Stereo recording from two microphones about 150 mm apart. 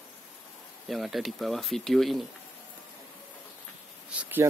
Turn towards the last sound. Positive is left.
turn(degrees=-10)  # may be behind; listen again after turning